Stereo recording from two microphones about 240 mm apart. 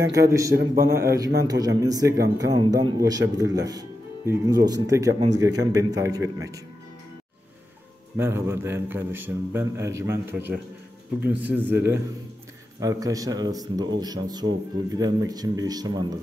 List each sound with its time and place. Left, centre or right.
0.2 s a man's voice: centre
0.6 s a man's voice: right
0.9 s a man's voice: centre
8.2 s a man's voice: centre